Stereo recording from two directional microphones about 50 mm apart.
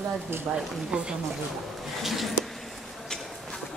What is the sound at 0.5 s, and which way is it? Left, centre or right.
Speech, centre.